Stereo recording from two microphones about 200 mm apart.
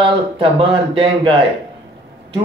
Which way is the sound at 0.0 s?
25° right (ahead or behind).